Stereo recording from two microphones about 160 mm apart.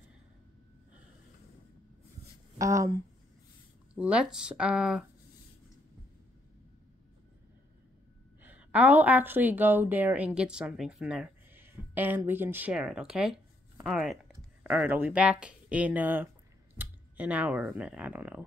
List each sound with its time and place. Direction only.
2.6 s speech: 20° right (ahead or behind)
3.9 s speech: 10° right (ahead or behind)
8.4 s a woman's voice: 10° right (ahead or behind)